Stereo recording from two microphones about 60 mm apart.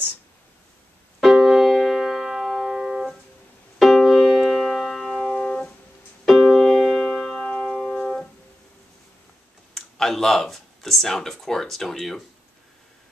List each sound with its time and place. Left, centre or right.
1.2 s music: centre
3.8 s piano: centre
6.2 s music: centre
7.2 s music: centre
9.8 s speech: centre